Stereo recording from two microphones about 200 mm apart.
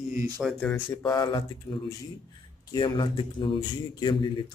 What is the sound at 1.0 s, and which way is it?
A man's voice, 20° left (ahead or behind).